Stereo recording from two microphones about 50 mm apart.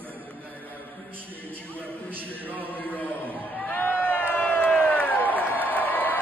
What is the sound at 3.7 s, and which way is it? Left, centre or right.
Run, left.